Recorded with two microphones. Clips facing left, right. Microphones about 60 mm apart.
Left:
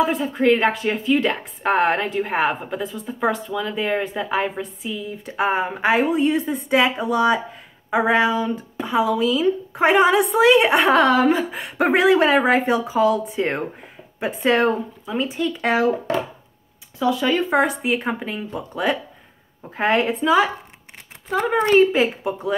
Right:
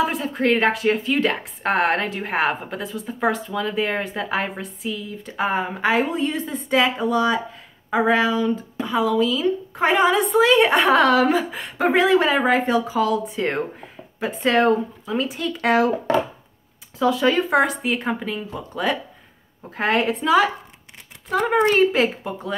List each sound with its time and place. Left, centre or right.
0.0 s a woman's voice: centre
11.6 s speech: left; by 15.9 s centre
17.0 s a woman's voice: centre
21.5 s speech: right
21.7 s speech: centre